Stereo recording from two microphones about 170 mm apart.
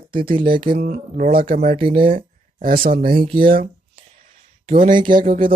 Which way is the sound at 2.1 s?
55° right (ahead or behind).